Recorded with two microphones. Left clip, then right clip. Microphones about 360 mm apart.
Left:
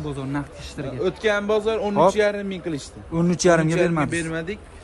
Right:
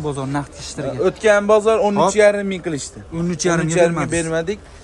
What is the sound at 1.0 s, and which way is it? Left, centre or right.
A man's voice, right.